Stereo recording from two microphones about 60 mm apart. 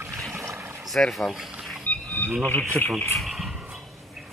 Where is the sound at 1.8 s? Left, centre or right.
Left.